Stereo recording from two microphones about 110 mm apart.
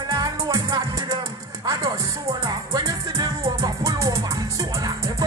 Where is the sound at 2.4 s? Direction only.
30° right (ahead or behind).